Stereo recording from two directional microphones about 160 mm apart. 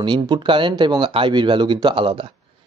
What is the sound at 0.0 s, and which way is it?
Speech, 30° right (ahead or behind).